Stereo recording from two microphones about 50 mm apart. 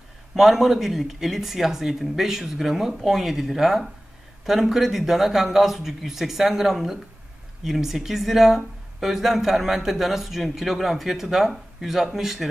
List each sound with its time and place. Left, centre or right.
0.3 s a man's voice: centre